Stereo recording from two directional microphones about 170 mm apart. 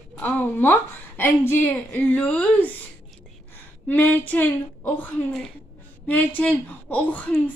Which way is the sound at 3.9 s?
10° left (ahead or behind).